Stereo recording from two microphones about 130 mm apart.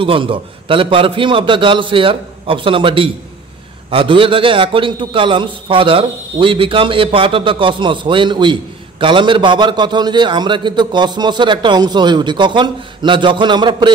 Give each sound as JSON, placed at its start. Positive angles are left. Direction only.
{"t": 0.0, "sound": "a man's voice", "side_deg": -40}